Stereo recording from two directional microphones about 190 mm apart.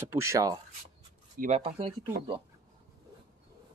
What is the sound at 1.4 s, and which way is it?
Speech, 30° right (ahead or behind).